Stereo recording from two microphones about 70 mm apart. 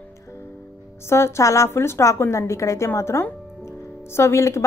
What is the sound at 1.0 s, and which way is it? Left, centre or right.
A woman's voice, left.